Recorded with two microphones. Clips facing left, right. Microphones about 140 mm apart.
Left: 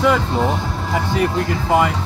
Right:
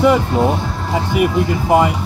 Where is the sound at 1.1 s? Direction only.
20° right (ahead or behind).